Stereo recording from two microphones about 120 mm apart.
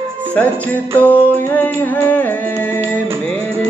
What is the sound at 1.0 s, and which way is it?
Music, 15° left (ahead or behind).